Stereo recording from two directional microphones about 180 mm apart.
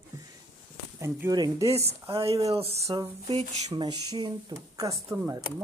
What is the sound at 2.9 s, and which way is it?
Speech, 20° right (ahead or behind).